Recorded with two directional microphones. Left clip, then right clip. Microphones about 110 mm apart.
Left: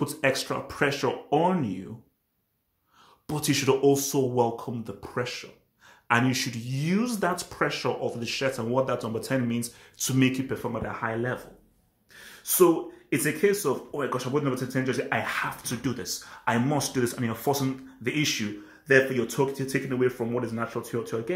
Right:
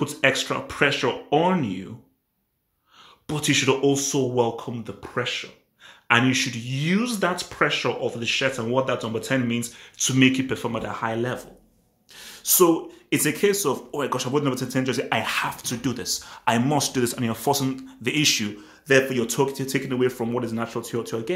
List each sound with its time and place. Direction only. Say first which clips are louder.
0.0 s speech: right 4 dB; 20° right (ahead or behind)
3.3 s speech: right 4 dB; 10° right (ahead or behind)
12.3 s gasp: right 3 dB; 15° right (ahead or behind)
13.1 s speech: right 3 dB; 20° right (ahead or behind)